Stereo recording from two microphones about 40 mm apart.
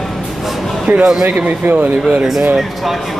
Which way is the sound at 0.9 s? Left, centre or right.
Right.